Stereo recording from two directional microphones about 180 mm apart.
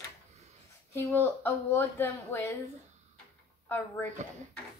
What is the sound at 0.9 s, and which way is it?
Speech, 15° left (ahead or behind).